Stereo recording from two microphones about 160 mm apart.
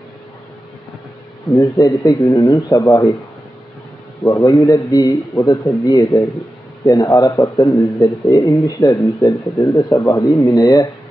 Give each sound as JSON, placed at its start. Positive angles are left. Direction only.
{"t": 1.5, "sound": "speech", "side_deg": 20}
{"t": 4.2, "sound": "speech", "side_deg": 20}